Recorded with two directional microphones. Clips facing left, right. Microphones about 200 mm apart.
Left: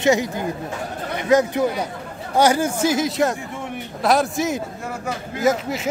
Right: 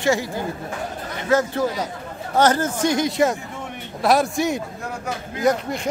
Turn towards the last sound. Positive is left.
turn(degrees=5)  # may be behind; listen again after turning